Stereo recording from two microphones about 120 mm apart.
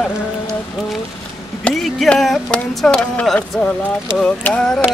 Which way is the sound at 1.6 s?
5° left (ahead or behind).